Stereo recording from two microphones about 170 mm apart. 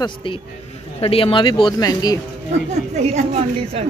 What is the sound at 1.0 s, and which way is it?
A man's voice, 35° left (ahead or behind).